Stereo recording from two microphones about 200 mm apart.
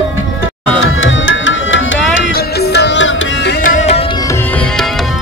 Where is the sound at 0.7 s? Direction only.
80° left.